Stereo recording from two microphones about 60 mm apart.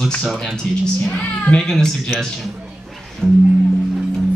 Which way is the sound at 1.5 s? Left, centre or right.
Centre.